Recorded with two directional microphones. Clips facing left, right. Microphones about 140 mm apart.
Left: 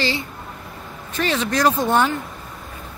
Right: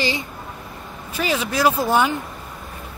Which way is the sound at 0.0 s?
15° right (ahead or behind).